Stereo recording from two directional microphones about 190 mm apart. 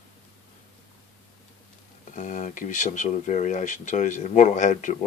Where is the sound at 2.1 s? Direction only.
40° left (ahead or behind).